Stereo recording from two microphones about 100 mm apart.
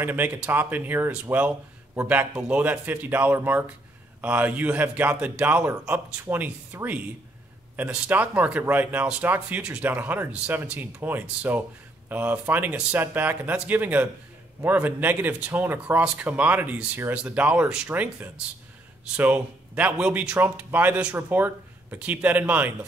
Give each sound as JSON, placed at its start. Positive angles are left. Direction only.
{"t": 0.0, "sound": "speech", "side_deg": -20}